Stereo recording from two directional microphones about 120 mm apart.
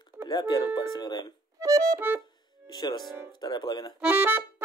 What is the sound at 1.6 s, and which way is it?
Music, 30° right (ahead or behind).